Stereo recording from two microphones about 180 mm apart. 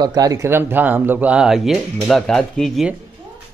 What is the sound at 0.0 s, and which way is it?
A man's voice, 20° right (ahead or behind).